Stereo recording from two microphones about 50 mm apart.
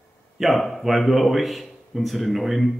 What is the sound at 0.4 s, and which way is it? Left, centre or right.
Speech, centre.